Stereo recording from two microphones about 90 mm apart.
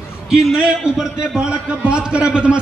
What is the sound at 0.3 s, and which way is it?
A man's voice, 5° right (ahead or behind).